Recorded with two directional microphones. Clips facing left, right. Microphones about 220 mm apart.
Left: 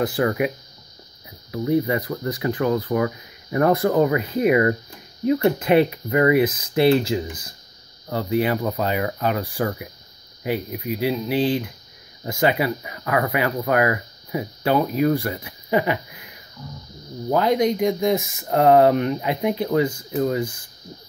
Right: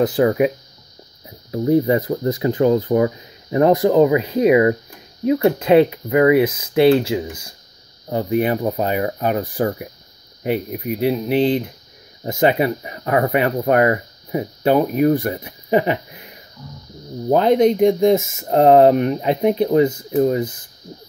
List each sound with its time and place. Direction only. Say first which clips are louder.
0.0 s speech: right 5 dB; 20° right (ahead or behind)
1.5 s speech: right 5 dB; 30° right (ahead or behind)
11.0 s speech: right 4 dB; 20° right (ahead or behind)
17.3 s speech: right 5 dB; 30° right (ahead or behind)